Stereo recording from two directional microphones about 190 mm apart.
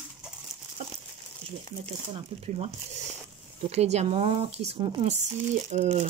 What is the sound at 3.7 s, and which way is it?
Speech, 35° right (ahead or behind).